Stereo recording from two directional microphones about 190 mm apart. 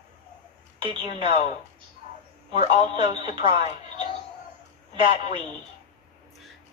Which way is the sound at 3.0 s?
25° right (ahead or behind).